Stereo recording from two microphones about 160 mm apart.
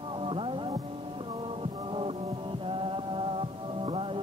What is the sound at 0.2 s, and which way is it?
Music, 35° right (ahead or behind).